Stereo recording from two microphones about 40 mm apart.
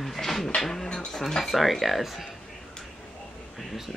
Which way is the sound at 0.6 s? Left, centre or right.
Centre.